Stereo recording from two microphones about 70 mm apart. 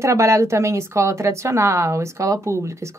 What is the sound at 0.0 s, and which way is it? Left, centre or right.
A woman's voice, right.